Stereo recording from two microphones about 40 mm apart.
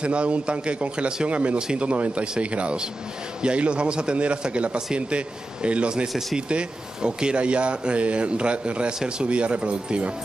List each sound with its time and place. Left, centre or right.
0.0 s a man's voice: right